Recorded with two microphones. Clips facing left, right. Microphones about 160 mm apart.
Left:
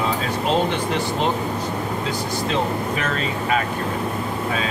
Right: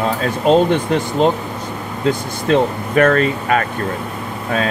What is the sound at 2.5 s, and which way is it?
Speech, 55° right (ahead or behind).